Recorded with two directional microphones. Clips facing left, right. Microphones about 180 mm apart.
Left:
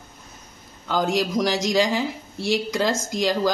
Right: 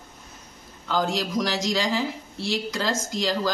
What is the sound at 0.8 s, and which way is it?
Speech, 15° left (ahead or behind).